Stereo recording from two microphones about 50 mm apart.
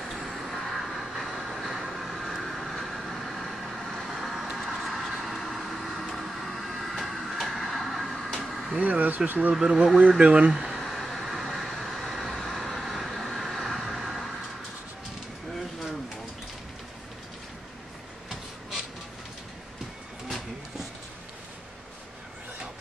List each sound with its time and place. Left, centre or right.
0.0 s vehicle: centre
8.7 s speech: right
9.5 s speech: centre
9.9 s speech: right
10.5 s a sound: centre
10.8 s vehicle: centre